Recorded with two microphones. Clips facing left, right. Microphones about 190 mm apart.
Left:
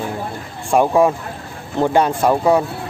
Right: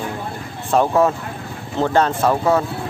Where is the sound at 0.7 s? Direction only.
10° left (ahead or behind).